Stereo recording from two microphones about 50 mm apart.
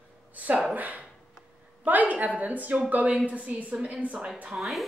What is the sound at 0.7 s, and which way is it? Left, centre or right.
A woman's voice, right.